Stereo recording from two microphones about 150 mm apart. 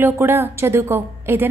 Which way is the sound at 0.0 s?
15° right (ahead or behind).